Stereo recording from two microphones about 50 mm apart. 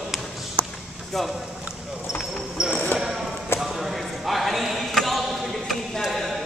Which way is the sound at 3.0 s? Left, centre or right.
Centre.